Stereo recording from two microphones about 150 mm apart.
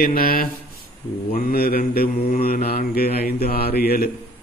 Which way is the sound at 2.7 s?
90° left.